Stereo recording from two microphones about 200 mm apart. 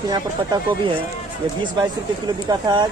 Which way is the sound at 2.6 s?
20° right (ahead or behind).